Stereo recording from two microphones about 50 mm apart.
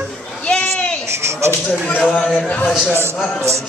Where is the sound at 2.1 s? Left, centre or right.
Centre.